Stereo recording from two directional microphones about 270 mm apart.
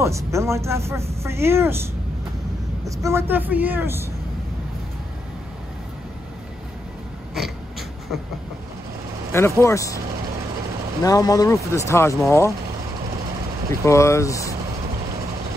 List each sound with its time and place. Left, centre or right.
0.0 s a woman's voice: centre
9.3 s speech: centre
11.1 s speech: centre
13.8 s speech: centre